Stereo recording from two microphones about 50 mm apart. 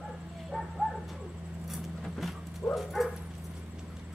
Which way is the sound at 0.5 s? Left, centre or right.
Centre.